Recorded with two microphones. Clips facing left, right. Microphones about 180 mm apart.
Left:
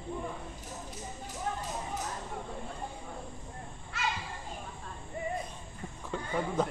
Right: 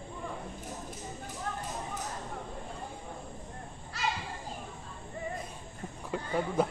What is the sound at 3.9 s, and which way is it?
Children playing, 35° right (ahead or behind).